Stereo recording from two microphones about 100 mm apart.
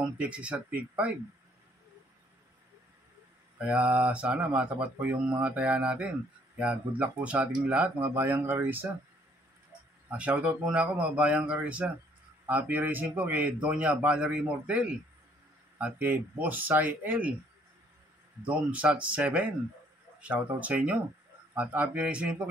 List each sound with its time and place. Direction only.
0.2 s speech: 10° right (ahead or behind)
3.5 s speech: 15° right (ahead or behind)
10.1 s speech: 15° right (ahead or behind)
18.4 s speech: 15° right (ahead or behind)